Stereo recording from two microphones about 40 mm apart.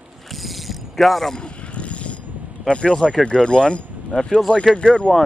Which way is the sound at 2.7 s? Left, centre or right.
Left.